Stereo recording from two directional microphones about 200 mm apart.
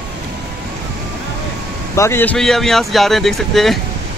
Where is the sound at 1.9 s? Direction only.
10° left (ahead or behind).